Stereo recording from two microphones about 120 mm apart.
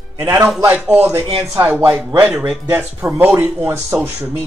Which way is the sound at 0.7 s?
15° right (ahead or behind).